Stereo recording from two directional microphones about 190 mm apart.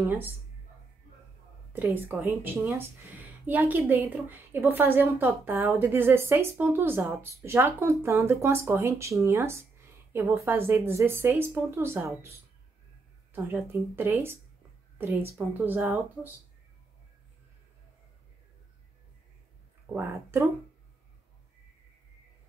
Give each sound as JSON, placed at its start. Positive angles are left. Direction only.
{"t": 0.0, "sound": "a woman's voice", "side_deg": -10}
{"t": 1.7, "sound": "a woman's voice", "side_deg": -10}
{"t": 13.3, "sound": "a woman's voice", "side_deg": -10}
{"t": 19.9, "sound": "a woman's voice", "side_deg": -10}